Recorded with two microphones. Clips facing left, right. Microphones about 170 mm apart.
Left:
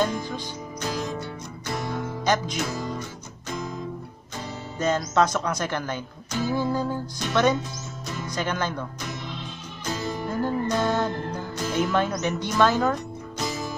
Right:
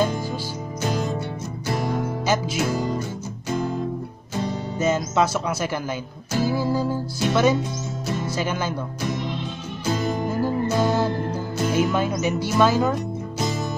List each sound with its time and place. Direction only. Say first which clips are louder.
2.2 s music: left 1 dB; 5° right (ahead or behind)
4.7 s speech: right 1 dB; 10° right (ahead or behind)
6.5 s music: right 2 dB; 5° right (ahead or behind)
8.3 s speech: left 1 dB; 5° right (ahead or behind)
9.8 s music: right 5 dB; 25° right (ahead or behind)
10.4 s music: right 2 dB; 5° right (ahead or behind)